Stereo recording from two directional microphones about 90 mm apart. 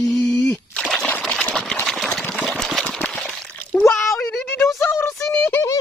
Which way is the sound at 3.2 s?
Centre (ahead or behind).